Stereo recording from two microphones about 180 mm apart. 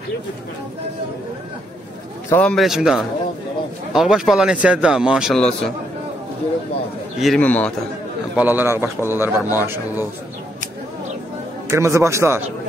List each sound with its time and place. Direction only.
2.2 s a man's voice: 10° left (ahead or behind)
7.2 s a man's voice: 5° left (ahead or behind)
8.4 s a man's voice: 10° right (ahead or behind)
11.7 s a man's voice: 15° right (ahead or behind)